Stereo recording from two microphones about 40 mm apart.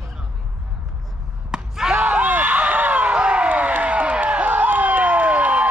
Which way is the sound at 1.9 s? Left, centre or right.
Right.